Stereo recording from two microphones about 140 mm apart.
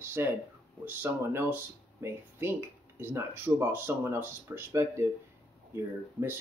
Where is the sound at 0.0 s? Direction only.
15° right (ahead or behind).